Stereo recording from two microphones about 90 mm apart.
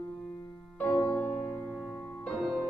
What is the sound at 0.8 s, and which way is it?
Music, 15° left (ahead or behind).